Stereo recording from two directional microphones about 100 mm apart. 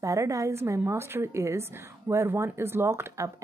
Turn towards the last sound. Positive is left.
turn(degrees=-25)  # may be behind; listen again after turning